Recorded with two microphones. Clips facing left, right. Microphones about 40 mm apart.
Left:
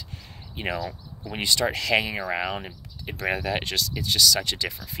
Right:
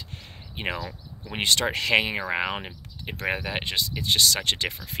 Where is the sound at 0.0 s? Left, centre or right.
Right.